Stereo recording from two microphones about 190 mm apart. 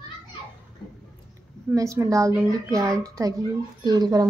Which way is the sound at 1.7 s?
15° right (ahead or behind).